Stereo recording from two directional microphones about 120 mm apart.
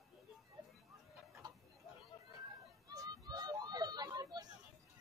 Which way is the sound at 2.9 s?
35° right (ahead or behind).